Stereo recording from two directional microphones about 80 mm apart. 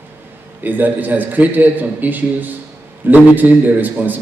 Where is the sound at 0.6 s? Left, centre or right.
Right.